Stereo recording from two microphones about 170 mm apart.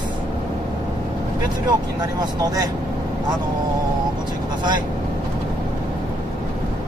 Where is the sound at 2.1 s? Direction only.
20° right (ahead or behind).